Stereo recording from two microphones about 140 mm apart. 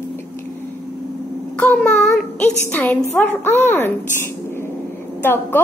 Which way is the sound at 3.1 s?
15° left (ahead or behind).